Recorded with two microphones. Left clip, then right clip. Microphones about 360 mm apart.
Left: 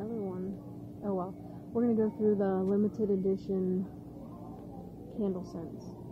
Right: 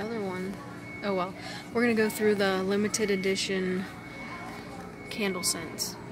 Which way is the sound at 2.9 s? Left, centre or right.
Centre.